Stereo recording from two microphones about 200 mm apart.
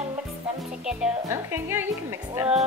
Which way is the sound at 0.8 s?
10° right (ahead or behind).